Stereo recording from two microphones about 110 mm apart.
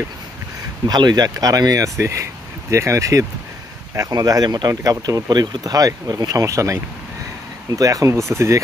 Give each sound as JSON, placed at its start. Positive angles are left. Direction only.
{"t": 0.8, "sound": "speech", "side_deg": -40}